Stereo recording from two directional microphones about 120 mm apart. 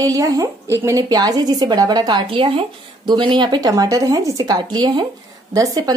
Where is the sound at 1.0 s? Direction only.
35° right (ahead or behind).